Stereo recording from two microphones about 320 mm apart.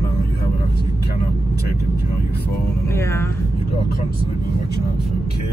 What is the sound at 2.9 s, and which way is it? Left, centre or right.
Speech, centre.